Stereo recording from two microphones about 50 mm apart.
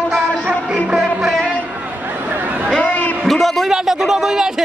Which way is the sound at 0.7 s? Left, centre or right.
Centre.